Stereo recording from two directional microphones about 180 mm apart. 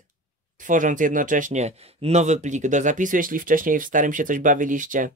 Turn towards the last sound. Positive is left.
turn(degrees=-45)  # may be behind; listen again after turning